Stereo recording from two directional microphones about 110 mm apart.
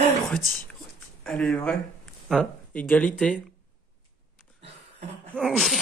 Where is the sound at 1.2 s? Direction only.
5° left (ahead or behind).